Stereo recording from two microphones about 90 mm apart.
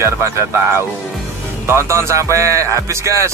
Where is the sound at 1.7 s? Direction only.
30° right (ahead or behind).